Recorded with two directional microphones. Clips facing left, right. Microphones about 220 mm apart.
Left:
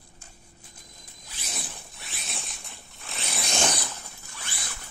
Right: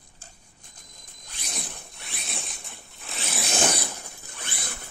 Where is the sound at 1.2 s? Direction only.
5° left (ahead or behind).